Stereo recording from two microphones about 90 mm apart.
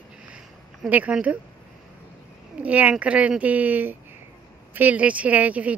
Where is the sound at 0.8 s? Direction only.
15° right (ahead or behind).